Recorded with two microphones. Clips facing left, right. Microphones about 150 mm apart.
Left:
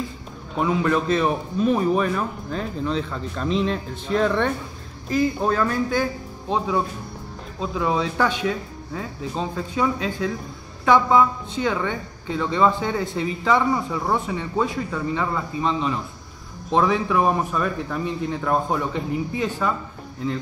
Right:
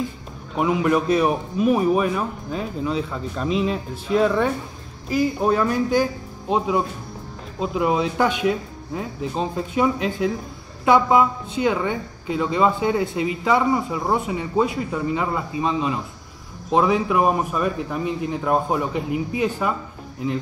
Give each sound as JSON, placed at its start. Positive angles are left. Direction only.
{"t": 0.6, "sound": "speech", "side_deg": -15}
{"t": 7.7, "sound": "speech", "side_deg": -15}